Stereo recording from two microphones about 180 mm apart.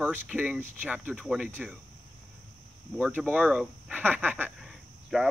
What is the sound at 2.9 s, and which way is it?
Speech, 10° right (ahead or behind).